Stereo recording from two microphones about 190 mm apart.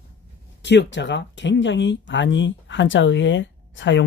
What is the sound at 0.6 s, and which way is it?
Speech, 70° left (ahead or behind).